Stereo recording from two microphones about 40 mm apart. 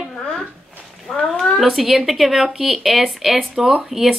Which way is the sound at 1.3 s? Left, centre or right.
Centre.